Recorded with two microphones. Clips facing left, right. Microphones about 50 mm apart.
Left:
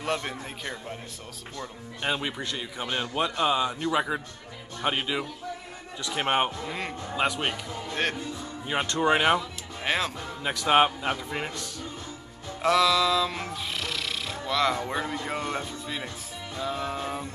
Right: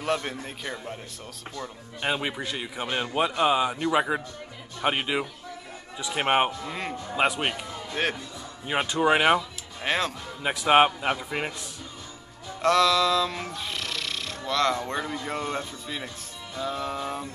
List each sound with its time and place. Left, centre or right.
0.0 s a man's voice: centre
6.6 s a man's voice: centre
7.2 s a man's voice: centre
7.9 s a man's voice: centre
9.8 s a man's voice: centre
10.4 s a man's voice: centre
12.6 s a man's voice: centre